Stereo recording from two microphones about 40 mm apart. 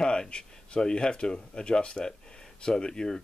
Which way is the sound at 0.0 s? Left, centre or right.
Left.